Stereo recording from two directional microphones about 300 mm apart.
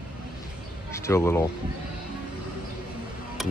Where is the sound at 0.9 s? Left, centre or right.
Centre.